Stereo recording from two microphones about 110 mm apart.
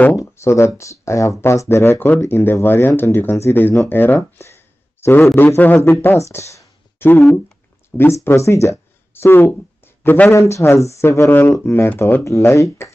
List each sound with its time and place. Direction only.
0.1 s speech: 25° left (ahead or behind)